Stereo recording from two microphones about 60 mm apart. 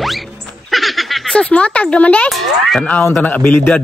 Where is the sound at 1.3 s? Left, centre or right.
Centre; by 3.7 s left.